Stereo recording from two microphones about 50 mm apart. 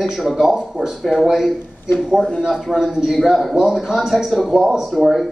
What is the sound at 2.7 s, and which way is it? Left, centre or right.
Speech, centre.